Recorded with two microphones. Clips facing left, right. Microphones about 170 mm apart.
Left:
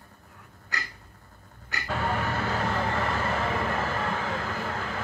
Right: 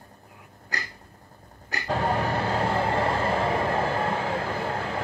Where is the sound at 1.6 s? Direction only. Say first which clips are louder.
Right 4 dB; 35° right (ahead or behind).